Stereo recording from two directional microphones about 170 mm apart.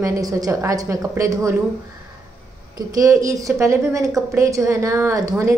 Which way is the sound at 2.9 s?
20° right (ahead or behind).